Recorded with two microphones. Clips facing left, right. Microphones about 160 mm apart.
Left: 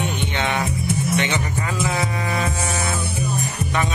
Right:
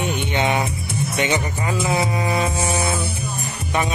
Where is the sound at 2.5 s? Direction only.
30° right (ahead or behind).